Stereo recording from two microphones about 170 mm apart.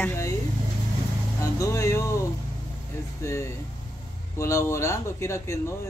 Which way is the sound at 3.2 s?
15° left (ahead or behind).